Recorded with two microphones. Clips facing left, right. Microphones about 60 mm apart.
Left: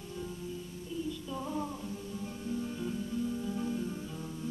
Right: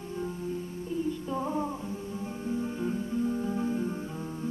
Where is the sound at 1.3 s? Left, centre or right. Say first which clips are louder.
Right 4 dB; right.